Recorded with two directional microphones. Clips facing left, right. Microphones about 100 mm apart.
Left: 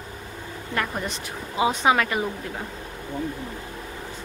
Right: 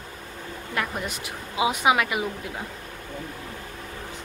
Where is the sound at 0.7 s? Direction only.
5° right (ahead or behind).